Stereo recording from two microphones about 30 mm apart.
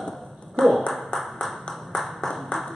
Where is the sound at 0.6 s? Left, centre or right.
Left.